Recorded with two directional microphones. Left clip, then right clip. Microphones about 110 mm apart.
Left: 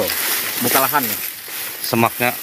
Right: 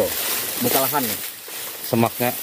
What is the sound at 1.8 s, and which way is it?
Speech, 25° right (ahead or behind).